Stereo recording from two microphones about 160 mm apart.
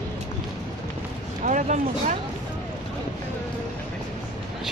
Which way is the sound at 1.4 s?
50° right (ahead or behind).